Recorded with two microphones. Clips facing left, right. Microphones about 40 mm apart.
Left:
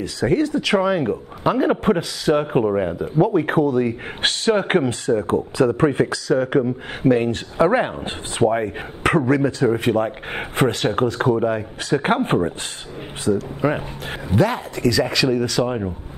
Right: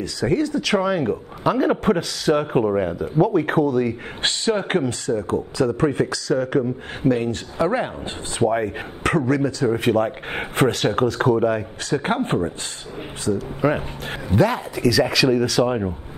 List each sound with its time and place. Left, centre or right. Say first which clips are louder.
0.0 s speech: left 2 dB; left
0.6 s a man's voice: left 2 dB; centre
4.7 s speech: left 3 dB; left
8.5 s a man's voice: left 1 dB; centre
9.0 s speech: left 2 dB; left
9.7 s a man's voice: even; centre
12.3 s speech: left 2 dB; left
13.3 s a man's voice: left 1 dB; centre
15.6 s speech: right 2 dB; centre